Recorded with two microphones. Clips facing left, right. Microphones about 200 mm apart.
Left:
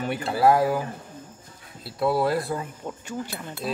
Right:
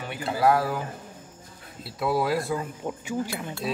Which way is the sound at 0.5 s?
15° left (ahead or behind).